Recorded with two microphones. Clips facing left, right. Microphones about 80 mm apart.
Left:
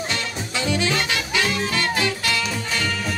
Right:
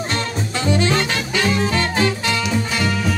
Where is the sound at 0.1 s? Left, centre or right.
Right.